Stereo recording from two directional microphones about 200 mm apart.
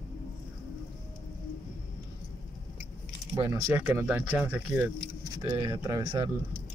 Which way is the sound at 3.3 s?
15° right (ahead or behind).